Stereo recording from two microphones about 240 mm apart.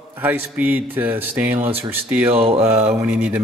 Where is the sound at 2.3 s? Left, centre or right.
Right.